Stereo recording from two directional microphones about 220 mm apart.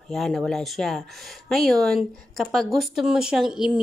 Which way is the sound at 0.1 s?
Centre (ahead or behind).